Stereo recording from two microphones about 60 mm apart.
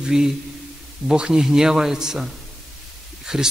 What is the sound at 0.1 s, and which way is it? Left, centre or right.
A man's voice, centre.